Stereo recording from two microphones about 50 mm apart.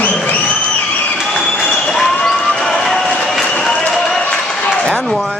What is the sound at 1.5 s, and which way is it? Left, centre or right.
Applause, centre.